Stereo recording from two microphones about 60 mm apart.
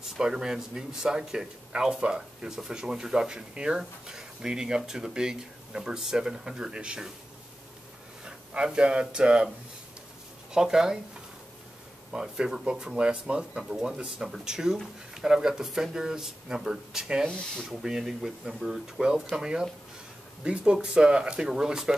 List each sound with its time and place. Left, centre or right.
0.2 s speech: centre
8.3 s speech: centre
10.5 s speech: centre
12.1 s speech: centre
17.3 s speech: centre
17.6 s speech: centre